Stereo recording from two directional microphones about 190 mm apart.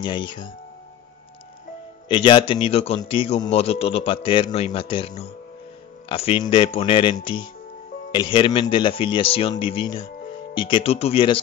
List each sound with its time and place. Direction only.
0.0 s speech: 25° left (ahead or behind)
2.0 s a man's voice: 25° left (ahead or behind)